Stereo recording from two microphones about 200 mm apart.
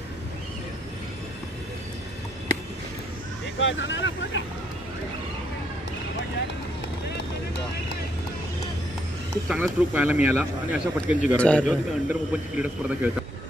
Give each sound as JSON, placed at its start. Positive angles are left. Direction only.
{"t": 3.5, "sound": "speech", "side_deg": 70}
{"t": 9.5, "sound": "speech", "side_deg": -10}
{"t": 11.3, "sound": "a man's voice", "side_deg": 5}